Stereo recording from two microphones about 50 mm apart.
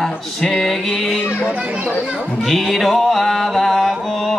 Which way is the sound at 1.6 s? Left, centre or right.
Right.